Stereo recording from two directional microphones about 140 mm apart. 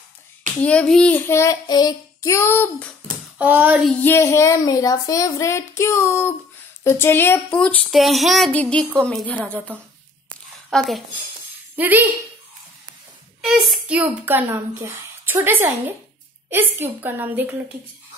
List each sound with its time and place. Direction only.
0.6 s child singing: 10° left (ahead or behind)
3.3 s a woman's voice: 10° right (ahead or behind)
3.9 s speech: 15° left (ahead or behind)
6.8 s child singing: 15° left (ahead or behind)
7.9 s a sound: centre (ahead or behind)
8.5 s child singing: 10° left (ahead or behind)
10.7 s a sound: 5° left (ahead or behind)
11.7 s speech: 10° right (ahead or behind)
13.4 s a woman's voice: 5° right (ahead or behind)